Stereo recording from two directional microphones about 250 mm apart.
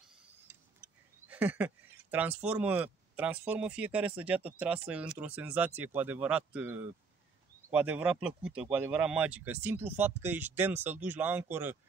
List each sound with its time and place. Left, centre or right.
1.3 s speech: centre